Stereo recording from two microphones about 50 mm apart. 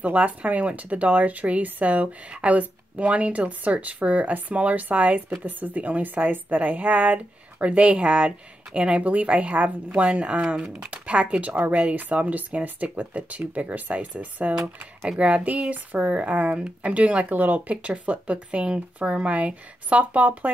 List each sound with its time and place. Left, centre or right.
0.0 s a woman's voice: right
17.3 s speech: right